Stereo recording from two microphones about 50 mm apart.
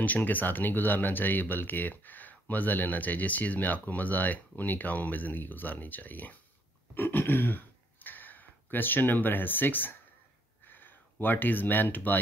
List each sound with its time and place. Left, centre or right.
0.0 s speech: left